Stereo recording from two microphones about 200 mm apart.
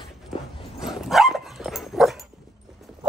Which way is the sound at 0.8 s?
Centre (ahead or behind).